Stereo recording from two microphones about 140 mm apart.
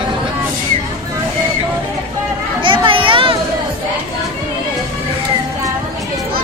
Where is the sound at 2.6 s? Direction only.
35° right (ahead or behind).